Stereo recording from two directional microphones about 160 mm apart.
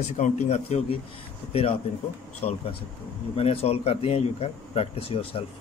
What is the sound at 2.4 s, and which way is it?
Speech, 35° left (ahead or behind).